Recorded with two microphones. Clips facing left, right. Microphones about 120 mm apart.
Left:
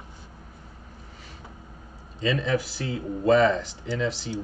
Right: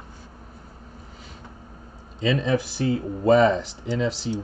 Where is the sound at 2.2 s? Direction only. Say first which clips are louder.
Right 3 dB; 20° right (ahead or behind).